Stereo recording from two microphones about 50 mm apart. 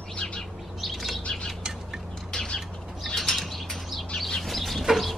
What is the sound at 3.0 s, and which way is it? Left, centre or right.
Bird flight, centre.